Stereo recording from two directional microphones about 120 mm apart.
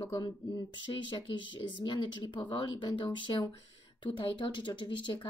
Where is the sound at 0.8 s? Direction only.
40° left (ahead or behind).